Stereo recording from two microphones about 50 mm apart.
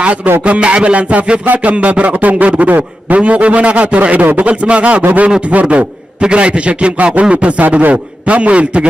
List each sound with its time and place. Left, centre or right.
0.0 s a man's voice: right